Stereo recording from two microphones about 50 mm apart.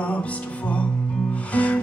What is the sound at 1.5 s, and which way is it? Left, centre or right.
Music, left.